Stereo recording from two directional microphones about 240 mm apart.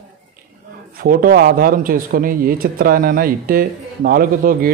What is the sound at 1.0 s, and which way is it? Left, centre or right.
A man's voice, right.